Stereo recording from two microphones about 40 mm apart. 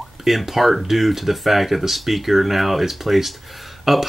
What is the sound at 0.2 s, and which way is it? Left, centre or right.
Speech, centre.